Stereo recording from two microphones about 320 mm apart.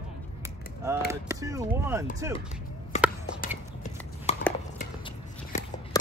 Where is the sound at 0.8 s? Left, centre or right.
Centre.